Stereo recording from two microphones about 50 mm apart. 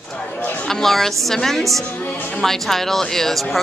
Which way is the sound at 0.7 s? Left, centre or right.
Centre.